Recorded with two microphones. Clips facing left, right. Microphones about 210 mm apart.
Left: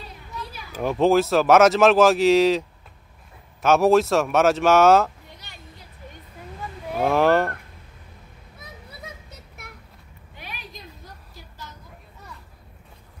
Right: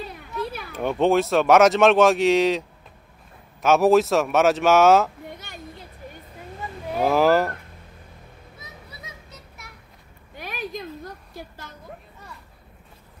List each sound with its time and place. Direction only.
0.4 s children playing: 60° right (ahead or behind)
0.7 s speech: centre (ahead or behind)
3.6 s speech: centre (ahead or behind)
6.9 s a sound: centre (ahead or behind)
10.3 s a sound: 50° right (ahead or behind)
11.4 s vehicle: 55° right (ahead or behind)